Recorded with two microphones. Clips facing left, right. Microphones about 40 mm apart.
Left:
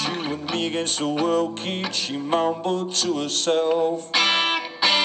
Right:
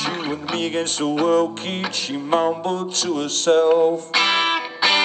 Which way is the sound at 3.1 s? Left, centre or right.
Right.